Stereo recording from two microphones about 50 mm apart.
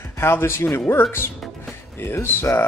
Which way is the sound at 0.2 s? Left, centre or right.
Left.